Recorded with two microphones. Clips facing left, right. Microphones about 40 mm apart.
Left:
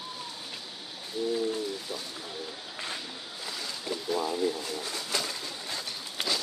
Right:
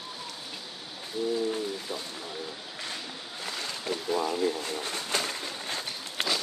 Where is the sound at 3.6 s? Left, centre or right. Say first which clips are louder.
Right 2 dB; right.